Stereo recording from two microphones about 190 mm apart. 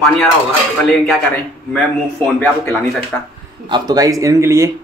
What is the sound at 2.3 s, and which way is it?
Speech, 5° left (ahead or behind).